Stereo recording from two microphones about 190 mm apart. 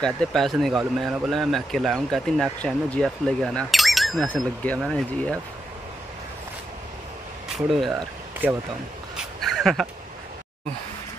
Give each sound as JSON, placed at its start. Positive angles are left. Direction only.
{"t": 0.0, "sound": "speech", "side_deg": 0}
{"t": 7.5, "sound": "speech", "side_deg": 0}
{"t": 9.1, "sound": "a sound", "side_deg": 0}